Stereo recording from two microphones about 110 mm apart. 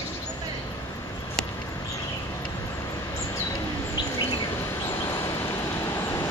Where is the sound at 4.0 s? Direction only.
50° left (ahead or behind).